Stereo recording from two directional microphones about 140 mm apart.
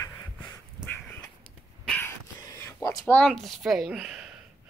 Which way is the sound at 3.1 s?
5° left (ahead or behind).